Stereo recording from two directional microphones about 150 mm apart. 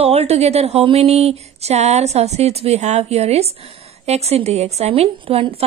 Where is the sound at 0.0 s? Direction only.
45° right (ahead or behind).